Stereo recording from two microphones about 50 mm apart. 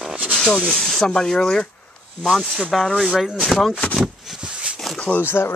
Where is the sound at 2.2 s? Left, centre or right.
Centre.